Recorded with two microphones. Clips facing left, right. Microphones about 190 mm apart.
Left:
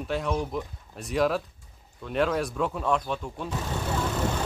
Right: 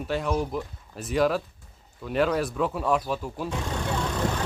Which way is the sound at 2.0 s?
Centre (ahead or behind).